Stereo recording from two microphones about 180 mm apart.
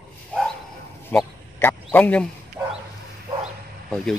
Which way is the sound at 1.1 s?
10° left (ahead or behind).